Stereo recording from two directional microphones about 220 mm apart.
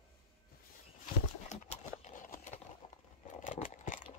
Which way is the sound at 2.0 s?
35° left (ahead or behind).